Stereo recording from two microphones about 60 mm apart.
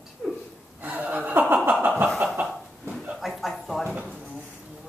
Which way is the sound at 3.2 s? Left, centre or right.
Centre.